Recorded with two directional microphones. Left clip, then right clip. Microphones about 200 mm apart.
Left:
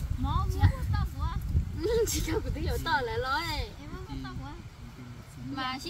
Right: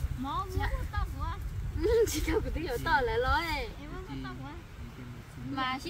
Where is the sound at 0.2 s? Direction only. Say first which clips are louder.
Left 1 dB; 55° left (ahead or behind).